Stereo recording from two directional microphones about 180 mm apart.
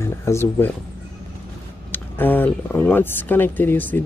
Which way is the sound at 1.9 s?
10° left (ahead or behind).